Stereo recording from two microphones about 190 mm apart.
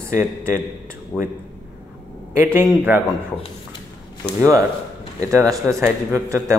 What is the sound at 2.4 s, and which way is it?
Speech, 10° right (ahead or behind).